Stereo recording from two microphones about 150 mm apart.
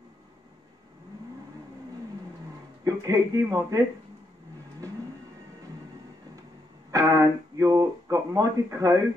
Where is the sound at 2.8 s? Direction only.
20° right (ahead or behind).